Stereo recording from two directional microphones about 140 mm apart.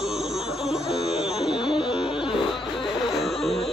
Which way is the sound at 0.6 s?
5° right (ahead or behind).